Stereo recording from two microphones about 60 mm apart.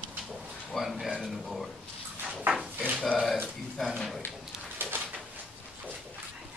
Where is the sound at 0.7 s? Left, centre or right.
Centre.